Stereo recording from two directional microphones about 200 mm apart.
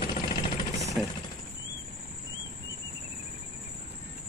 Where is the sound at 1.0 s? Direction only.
Centre (ahead or behind).